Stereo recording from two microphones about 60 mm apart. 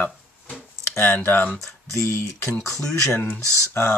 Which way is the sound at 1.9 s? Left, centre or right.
Left.